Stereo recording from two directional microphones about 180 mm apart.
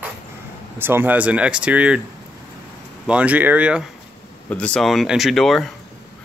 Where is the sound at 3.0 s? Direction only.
5° right (ahead or behind).